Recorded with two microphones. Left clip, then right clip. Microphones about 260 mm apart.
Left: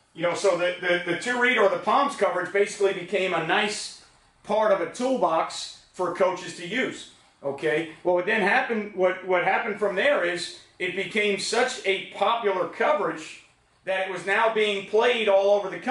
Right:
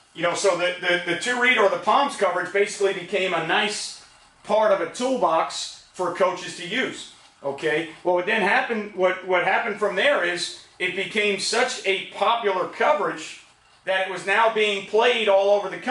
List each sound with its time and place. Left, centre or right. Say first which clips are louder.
0.2 s speech: right 2 dB; centre
8.5 s speech: right 1 dB; centre